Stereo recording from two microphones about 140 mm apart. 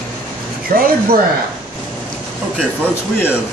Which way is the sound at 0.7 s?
90° right.